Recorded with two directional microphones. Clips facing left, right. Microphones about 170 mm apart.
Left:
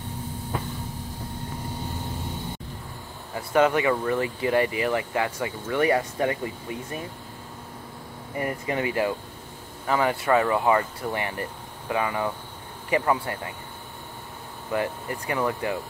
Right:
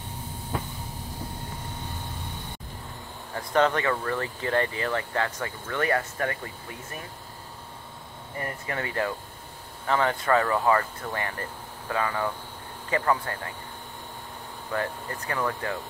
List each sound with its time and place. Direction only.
3.3 s speech: 10° left (ahead or behind)
8.4 s speech: 15° left (ahead or behind)
14.7 s speech: 15° left (ahead or behind)